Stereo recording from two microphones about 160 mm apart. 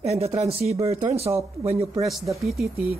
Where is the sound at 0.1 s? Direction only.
40° right (ahead or behind).